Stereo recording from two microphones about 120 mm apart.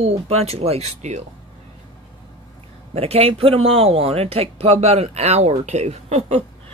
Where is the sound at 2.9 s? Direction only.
55° right (ahead or behind).